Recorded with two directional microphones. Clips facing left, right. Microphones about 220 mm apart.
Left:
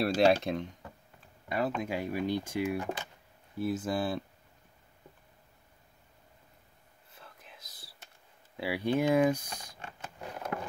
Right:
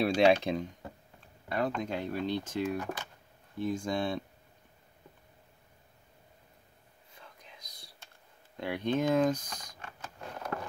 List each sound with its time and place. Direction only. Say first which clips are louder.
0.0 s speech: right 1 dB; centre (ahead or behind)
2.8 s speech: left 2 dB; 25° left (ahead or behind)
3.5 s speech: left 1 dB; 5° left (ahead or behind)
7.2 s whispering: even; 5° left (ahead or behind)
8.5 s speech: left 1 dB; 5° left (ahead or behind)
10.2 s a sound: left 1 dB; 15° left (ahead or behind)